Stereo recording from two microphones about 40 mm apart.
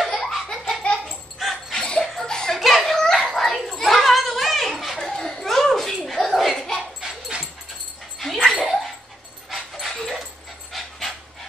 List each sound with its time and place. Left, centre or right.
0.0 s laughter: centre
1.0 s music: centre
1.9 s a sound: centre
2.5 s a sound: centre
3.2 s children playing: centre
4.9 s a sound: centre
7.0 s dog: right
8.2 s dog: centre
9.9 s dog: centre